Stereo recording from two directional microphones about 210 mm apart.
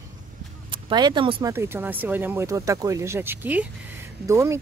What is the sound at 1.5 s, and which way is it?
Speech, 10° right (ahead or behind).